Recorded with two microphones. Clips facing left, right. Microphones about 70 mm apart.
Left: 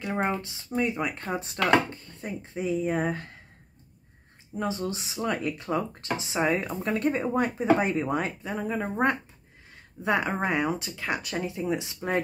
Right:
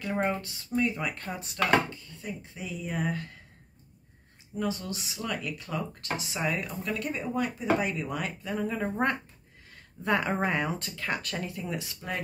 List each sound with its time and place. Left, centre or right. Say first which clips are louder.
0.0 s speech: left 1 dB; centre
1.9 s speech: left 3 dB; left
4.6 s speech: left 2 dB; left; by 11.5 s centre
11.5 s speech: left 6 dB; left